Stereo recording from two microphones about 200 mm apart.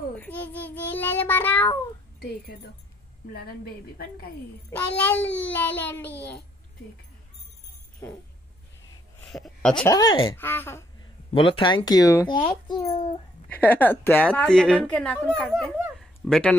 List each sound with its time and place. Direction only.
0.2 s child singing: 10° left (ahead or behind)
2.5 s speech: 50° left (ahead or behind)
4.6 s child singing: 5° left (ahead or behind)
8.0 s child singing: 10° left (ahead or behind)
9.2 s a sound: centre (ahead or behind)
9.8 s child singing: 20° left (ahead or behind)
11.3 s speech: 25° left (ahead or behind)
13.5 s a woman's voice: 10° left (ahead or behind)